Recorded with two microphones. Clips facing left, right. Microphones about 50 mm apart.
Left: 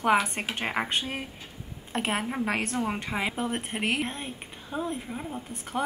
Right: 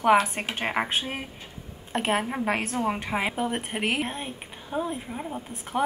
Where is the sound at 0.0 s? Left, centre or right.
Centre.